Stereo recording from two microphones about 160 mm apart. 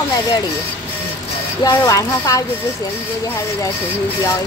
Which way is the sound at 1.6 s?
20° left (ahead or behind).